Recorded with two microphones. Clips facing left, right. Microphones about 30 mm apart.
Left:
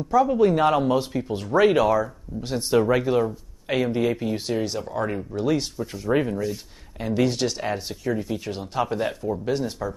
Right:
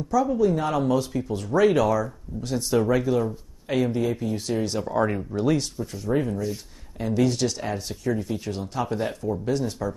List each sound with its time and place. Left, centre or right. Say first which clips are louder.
0.1 s speech: left 3 dB; left
0.7 s speech: left 1 dB; left
4.7 s speech: right 3 dB; centre
5.6 s speech: left 1 dB; centre
6.0 s speech: left 2 dB; left
7.0 s speech: even; left
7.9 s speech: even; centre
8.9 s speech: left 1 dB; centre